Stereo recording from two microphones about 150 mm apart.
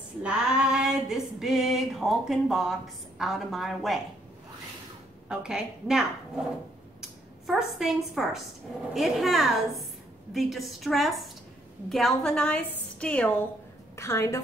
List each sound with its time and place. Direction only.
0.2 s female singing: 5° right (ahead or behind)
5.3 s female singing: 5° right (ahead or behind)
7.0 s a woman's voice: 5° right (ahead or behind)
8.9 s female singing: centre (ahead or behind)
11.9 s a woman's voice: centre (ahead or behind); by 14.4 s 20° left (ahead or behind)